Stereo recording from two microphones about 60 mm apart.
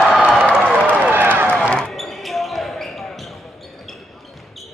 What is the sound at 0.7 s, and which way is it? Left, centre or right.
Run, right.